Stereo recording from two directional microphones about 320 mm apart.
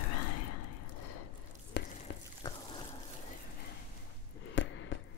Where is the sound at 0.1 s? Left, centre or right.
Left.